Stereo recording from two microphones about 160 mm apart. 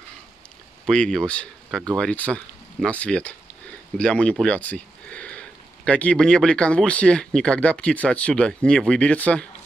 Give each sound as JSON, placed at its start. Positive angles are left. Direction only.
{"t": 0.8, "sound": "speech", "side_deg": 5}